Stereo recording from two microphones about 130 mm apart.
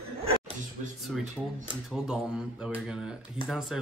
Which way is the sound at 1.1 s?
Centre (ahead or behind).